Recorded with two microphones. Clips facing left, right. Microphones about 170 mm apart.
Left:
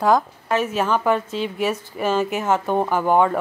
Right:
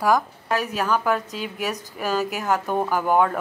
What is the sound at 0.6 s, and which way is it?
A woman's voice, centre (ahead or behind).